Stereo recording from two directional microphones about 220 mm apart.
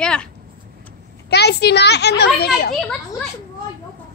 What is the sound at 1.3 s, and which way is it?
A child's voice, 50° left (ahead or behind).